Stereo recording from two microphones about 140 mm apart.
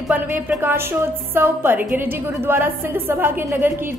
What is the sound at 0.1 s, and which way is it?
A woman's voice, 10° right (ahead or behind).